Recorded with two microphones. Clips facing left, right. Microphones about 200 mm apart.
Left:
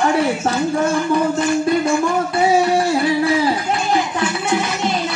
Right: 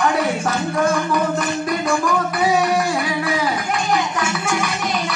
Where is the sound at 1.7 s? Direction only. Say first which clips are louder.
Left 3 dB; 25° left (ahead or behind).